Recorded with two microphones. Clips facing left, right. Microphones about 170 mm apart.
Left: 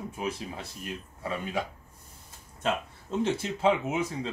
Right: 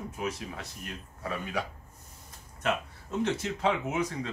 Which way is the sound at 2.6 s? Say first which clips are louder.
Left 1 dB; 25° left (ahead or behind).